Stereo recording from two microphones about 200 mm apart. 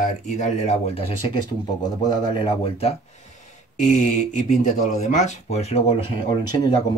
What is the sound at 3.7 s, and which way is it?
Speech, 40° left (ahead or behind).